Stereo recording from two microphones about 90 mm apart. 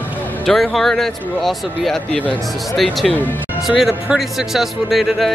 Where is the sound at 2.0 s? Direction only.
15° left (ahead or behind).